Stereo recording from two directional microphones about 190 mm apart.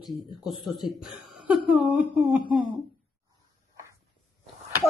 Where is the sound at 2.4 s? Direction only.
25° right (ahead or behind).